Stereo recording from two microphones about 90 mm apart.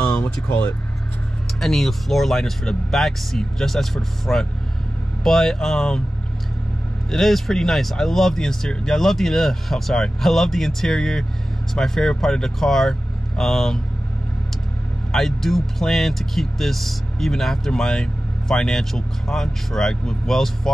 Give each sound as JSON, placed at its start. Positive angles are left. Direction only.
{"t": 0.0, "sound": "a sound", "side_deg": 10}
{"t": 0.5, "sound": "speech", "side_deg": 15}
{"t": 1.6, "sound": "speech", "side_deg": 5}
{"t": 7.1, "sound": "speech", "side_deg": 5}
{"t": 15.1, "sound": "speech", "side_deg": 5}